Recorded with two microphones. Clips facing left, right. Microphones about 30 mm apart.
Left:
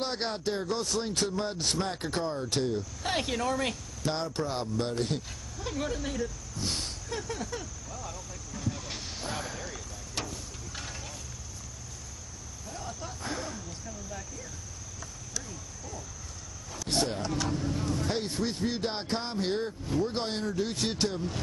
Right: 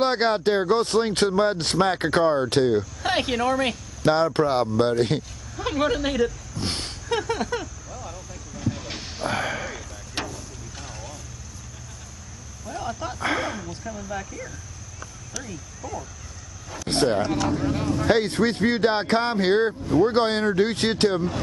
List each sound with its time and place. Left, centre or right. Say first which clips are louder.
0.0 s speech: right 11 dB; right
3.0 s speech: right 7 dB; right
4.0 s speech: right 12 dB; right
6.5 s speech: right 5 dB; right
7.1 s a sound: right 13 dB; right
7.9 s vehicle: right 4 dB; centre
9.3 s a sound: right 11 dB; right
9.7 s vehicle: right 6 dB; right
10.8 s vehicle: right 3 dB; centre
12.6 s a sound: right 10 dB; right
13.2 s a sound: right 12 dB; right
15.4 s speech: right 7 dB; right
17.5 s speech: right 8 dB; right